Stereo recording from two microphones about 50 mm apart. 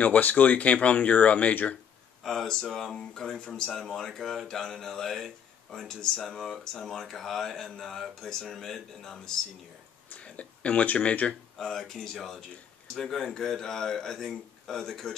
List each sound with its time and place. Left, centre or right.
0.0 s speech: left
2.2 s a man's voice: centre
3.8 s a man's voice: centre
10.0 s speech: left
11.5 s a man's voice: centre